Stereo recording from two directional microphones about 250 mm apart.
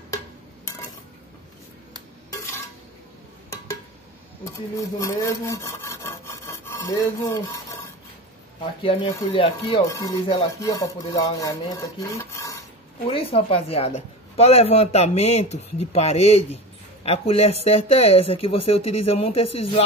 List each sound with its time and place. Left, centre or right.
4.7 s rub: centre
9.1 s speech: left
19.4 s speech: left